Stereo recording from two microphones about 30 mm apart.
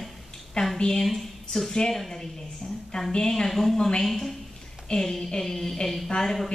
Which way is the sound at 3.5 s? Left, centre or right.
Centre.